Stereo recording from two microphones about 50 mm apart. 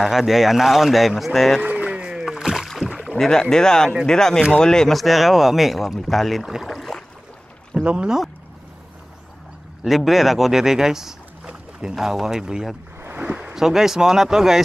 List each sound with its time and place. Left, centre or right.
0.0 s speech: centre
1.6 s rowboat: right
1.9 s rowboat: centre
3.2 s speech: centre
4.9 s speech: centre
6.6 s boat: centre
7.8 s speech: right
9.8 s speech: centre
13.1 s boat: right
13.6 s speech: centre